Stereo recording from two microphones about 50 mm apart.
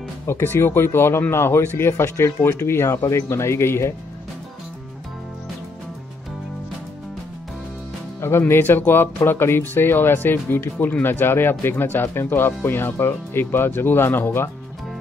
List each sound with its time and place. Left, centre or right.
0.3 s speech: left
8.2 s speech: left